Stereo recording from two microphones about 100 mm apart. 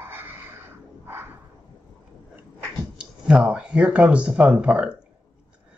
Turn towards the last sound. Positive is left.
turn(degrees=-10)  # may be behind; listen again after turning